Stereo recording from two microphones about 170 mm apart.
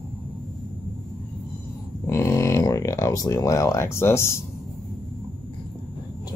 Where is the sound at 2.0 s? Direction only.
15° left (ahead or behind).